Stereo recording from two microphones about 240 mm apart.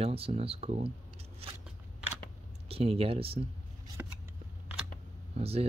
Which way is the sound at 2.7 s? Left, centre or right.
Right.